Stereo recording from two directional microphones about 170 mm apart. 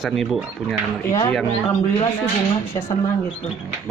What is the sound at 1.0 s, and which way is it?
Speech, 15° left (ahead or behind).